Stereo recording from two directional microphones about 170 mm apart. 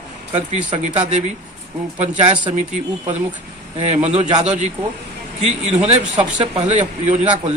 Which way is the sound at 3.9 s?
40° right (ahead or behind).